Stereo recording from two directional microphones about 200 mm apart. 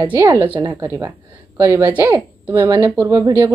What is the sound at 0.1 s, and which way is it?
A woman's voice, 15° right (ahead or behind).